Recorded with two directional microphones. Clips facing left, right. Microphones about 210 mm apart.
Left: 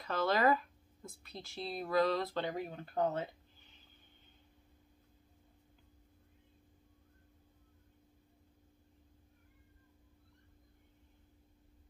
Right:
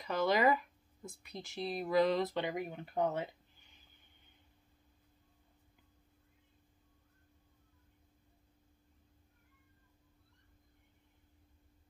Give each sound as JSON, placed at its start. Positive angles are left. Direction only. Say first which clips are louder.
{"t": 0.0, "sound": "speech", "louder": "right 1 dB", "side_deg": -15}